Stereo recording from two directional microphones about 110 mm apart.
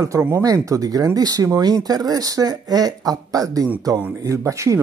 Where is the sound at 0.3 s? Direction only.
30° right (ahead or behind).